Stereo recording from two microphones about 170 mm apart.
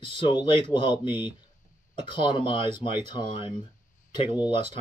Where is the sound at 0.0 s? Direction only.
30° left (ahead or behind).